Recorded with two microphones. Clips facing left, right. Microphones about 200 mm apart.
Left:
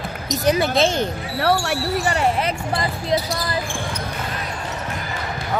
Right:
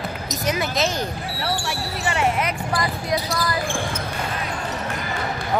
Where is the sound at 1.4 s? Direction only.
60° left (ahead or behind).